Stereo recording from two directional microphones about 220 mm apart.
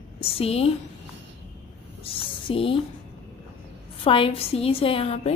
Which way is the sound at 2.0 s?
25° left (ahead or behind).